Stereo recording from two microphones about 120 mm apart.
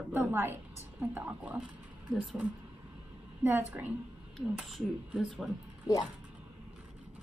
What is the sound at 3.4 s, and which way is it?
Speech, 15° right (ahead or behind).